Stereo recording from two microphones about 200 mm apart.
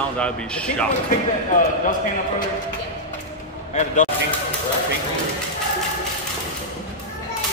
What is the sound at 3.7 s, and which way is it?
Speech, 40° left (ahead or behind).